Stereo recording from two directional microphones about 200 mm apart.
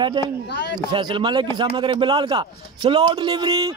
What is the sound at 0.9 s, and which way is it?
A man's voice, 25° right (ahead or behind).